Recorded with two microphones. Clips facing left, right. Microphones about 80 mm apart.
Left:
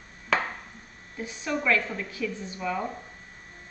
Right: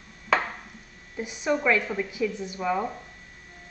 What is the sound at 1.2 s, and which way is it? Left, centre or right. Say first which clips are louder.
Speech: right 4 dB; centre.